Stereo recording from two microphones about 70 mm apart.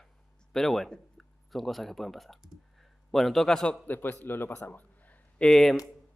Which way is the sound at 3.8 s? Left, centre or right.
Left.